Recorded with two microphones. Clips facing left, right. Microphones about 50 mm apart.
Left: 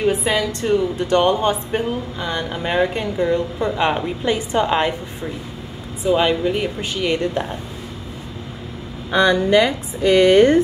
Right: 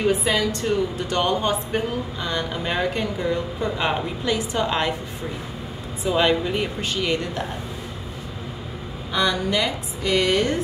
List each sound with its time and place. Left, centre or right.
0.0 s a woman's voice: centre
1.1 s a woman's voice: centre
4.2 s speech: left
6.0 s a woman's voice: centre
9.1 s speech: left